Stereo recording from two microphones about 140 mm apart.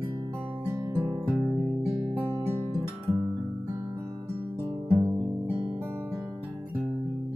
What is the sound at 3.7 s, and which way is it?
Guitar, 25° right (ahead or behind).